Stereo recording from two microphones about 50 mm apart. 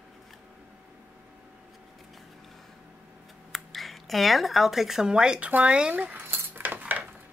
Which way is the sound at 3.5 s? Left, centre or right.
Centre.